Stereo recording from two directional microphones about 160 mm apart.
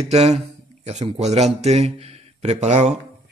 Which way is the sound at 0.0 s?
40° right (ahead or behind).